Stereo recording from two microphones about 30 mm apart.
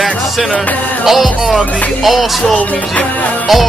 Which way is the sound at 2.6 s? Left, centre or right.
Left.